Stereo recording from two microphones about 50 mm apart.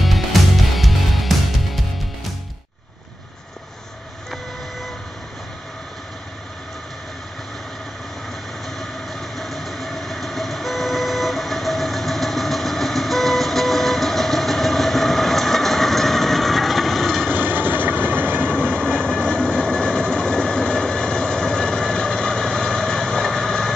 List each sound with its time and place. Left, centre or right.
0.0 s music: centre
8.6 s train: centre
17.4 s vehicle: right
18.4 s vehicle: centre